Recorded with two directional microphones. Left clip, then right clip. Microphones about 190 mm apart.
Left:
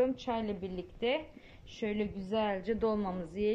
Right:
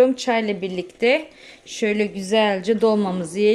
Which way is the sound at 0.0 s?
25° right (ahead or behind).